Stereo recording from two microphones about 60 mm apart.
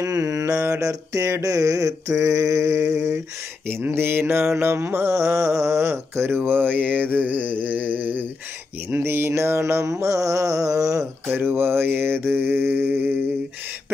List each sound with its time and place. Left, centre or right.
0.0 s mantra: right
3.6 s mantra: right
9.3 s mantra: right
11.3 s mantra: right